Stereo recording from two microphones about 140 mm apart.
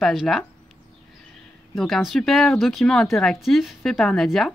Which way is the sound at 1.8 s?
Centre (ahead or behind).